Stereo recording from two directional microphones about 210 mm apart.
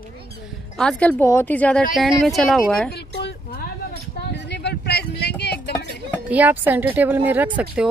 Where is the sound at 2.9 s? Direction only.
50° left (ahead or behind).